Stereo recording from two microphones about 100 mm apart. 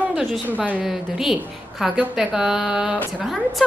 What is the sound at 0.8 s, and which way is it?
A woman's voice, 5° right (ahead or behind).